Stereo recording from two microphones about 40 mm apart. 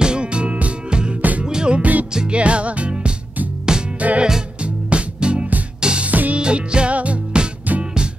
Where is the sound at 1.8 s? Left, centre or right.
Right.